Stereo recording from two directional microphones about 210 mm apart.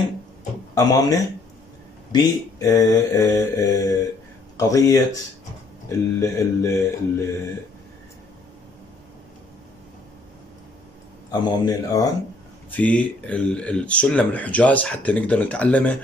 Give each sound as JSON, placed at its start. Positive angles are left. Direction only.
{"t": 0.7, "sound": "speech", "side_deg": 15}
{"t": 2.1, "sound": "speech", "side_deg": 15}
{"t": 11.4, "sound": "speech", "side_deg": 20}
{"t": 12.7, "sound": "speech", "side_deg": 5}